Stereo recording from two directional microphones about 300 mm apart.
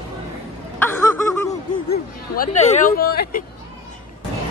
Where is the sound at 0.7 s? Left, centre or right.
Centre.